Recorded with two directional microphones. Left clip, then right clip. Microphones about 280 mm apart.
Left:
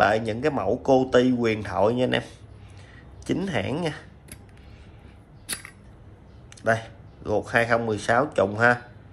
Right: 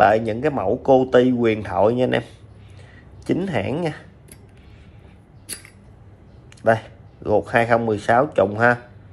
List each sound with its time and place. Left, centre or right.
0.0 s speech: centre
6.6 s speech: centre